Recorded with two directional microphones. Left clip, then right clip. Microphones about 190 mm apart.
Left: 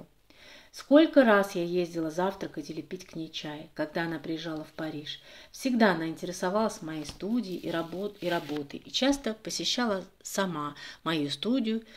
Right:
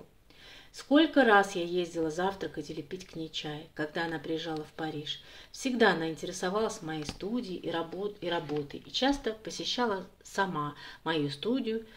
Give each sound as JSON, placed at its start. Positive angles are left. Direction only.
{"t": 0.7, "sound": "speech", "side_deg": 45}